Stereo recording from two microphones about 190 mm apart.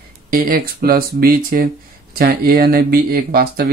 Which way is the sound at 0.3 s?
50° right (ahead or behind).